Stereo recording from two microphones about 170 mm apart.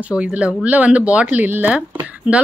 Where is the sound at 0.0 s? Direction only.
5° right (ahead or behind).